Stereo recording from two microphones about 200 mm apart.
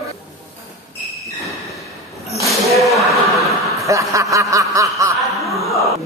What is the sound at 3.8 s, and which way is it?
Snicker, 15° right (ahead or behind).